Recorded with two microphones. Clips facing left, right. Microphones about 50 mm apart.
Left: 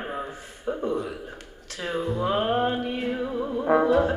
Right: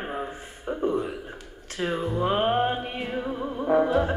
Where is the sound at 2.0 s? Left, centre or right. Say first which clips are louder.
Even; right.